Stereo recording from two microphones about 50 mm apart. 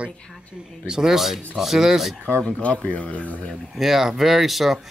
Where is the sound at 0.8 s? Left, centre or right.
Centre.